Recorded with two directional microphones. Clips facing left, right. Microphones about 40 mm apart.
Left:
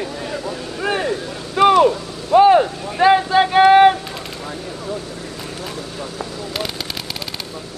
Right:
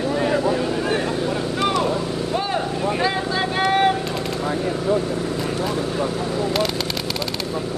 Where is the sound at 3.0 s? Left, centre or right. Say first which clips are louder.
Left 8 dB; left.